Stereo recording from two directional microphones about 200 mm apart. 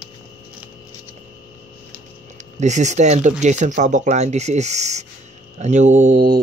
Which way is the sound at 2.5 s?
35° right (ahead or behind).